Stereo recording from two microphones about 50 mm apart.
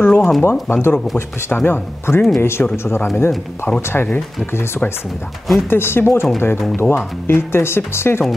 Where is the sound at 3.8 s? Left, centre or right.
Left.